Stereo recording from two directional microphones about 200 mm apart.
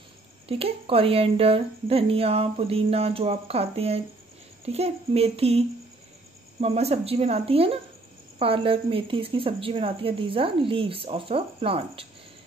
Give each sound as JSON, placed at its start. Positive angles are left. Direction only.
{"t": 0.5, "sound": "a woman's voice", "side_deg": -30}